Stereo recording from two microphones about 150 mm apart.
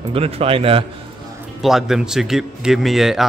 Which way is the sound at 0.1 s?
40° right (ahead or behind).